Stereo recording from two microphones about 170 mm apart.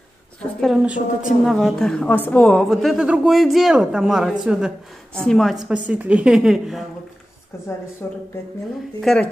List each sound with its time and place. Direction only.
0.4 s a woman's voice: centre (ahead or behind)
7.5 s a woman's voice: 15° left (ahead or behind)